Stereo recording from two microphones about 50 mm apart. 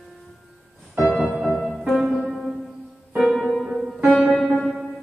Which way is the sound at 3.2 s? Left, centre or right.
Centre.